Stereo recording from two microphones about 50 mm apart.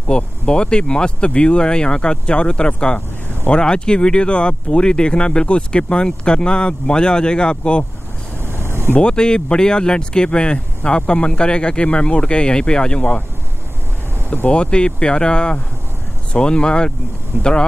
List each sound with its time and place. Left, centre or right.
0.1 s speech: centre
8.4 s vehicle: right
8.9 s speech: centre
14.5 s speech: left